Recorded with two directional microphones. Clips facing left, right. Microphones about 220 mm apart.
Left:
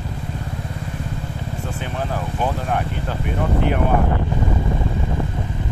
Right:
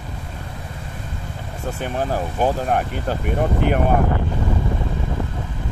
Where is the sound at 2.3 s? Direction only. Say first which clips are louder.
Right 3 dB; 40° right (ahead or behind).